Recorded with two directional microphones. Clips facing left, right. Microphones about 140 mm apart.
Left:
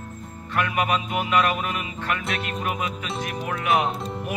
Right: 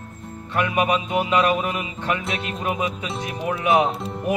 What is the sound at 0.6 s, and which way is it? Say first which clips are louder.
Speech: right 3 dB; 20° right (ahead or behind).